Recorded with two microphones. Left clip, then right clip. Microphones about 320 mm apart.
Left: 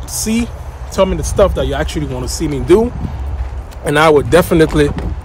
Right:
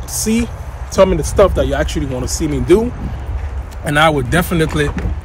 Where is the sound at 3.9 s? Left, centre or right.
Centre.